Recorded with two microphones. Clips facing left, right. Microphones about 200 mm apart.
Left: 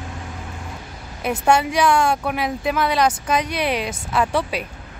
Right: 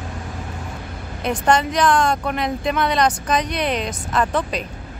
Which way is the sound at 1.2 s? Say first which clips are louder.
Even; 10° left (ahead or behind).